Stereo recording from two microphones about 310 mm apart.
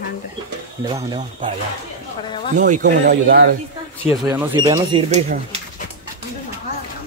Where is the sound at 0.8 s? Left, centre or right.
Centre.